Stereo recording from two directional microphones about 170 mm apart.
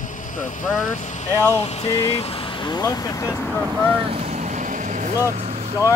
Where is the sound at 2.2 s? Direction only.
35° left (ahead or behind); by 3.6 s 15° left (ahead or behind).